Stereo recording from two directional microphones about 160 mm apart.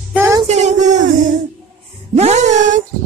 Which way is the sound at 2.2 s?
45° right (ahead or behind).